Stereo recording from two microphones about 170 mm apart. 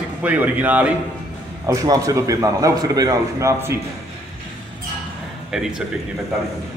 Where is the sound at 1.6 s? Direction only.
20° right (ahead or behind).